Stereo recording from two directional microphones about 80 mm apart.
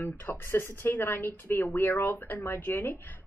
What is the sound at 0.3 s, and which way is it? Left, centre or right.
Speech, left.